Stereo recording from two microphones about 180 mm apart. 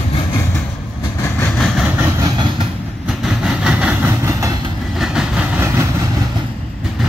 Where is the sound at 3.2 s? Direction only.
5° right (ahead or behind).